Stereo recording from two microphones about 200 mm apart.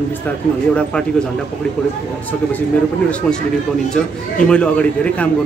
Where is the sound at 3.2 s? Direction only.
5° left (ahead or behind).